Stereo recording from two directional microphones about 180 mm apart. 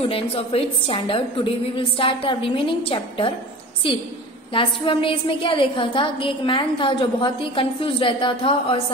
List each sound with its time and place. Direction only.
0.0 s a woman's voice: 35° left (ahead or behind)
4.6 s a woman's voice: 30° left (ahead or behind)